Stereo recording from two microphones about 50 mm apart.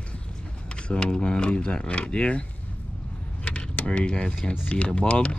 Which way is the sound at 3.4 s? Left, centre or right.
Left.